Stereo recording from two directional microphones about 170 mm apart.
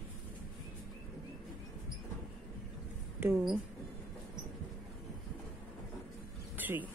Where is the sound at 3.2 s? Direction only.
10° right (ahead or behind).